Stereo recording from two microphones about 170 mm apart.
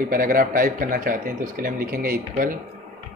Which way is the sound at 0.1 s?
55° right (ahead or behind).